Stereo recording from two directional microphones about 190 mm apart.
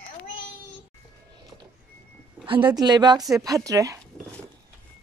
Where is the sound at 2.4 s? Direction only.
25° right (ahead or behind).